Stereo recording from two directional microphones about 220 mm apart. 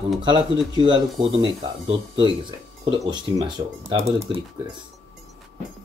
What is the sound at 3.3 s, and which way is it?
Speech, 15° right (ahead or behind).